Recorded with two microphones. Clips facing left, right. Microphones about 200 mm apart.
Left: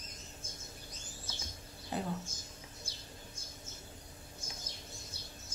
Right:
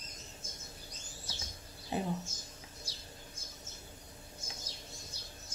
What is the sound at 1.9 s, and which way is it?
Speech, 20° right (ahead or behind).